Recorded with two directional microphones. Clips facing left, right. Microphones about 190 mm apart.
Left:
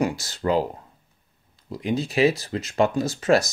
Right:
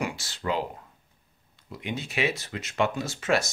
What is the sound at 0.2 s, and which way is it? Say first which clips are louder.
Speech: left 7 dB; 40° left (ahead or behind).